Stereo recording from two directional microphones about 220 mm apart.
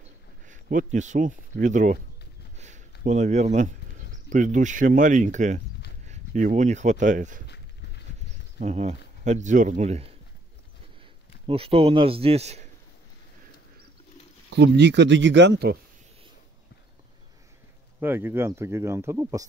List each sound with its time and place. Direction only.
0.5 s speech: 35° right (ahead or behind)
2.5 s a sound: 35° right (ahead or behind)
4.3 s speech: 35° right (ahead or behind)
8.5 s speech: 30° right (ahead or behind)
11.4 s speech: 25° right (ahead or behind)
14.5 s speech: 50° right (ahead or behind)
18.0 s speech: 10° right (ahead or behind)